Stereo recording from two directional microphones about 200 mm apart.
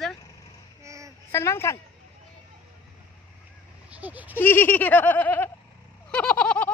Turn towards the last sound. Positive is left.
turn(degrees=5)  # may be behind; listen again after turning